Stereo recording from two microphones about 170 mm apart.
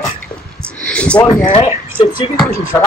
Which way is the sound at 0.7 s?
5° left (ahead or behind).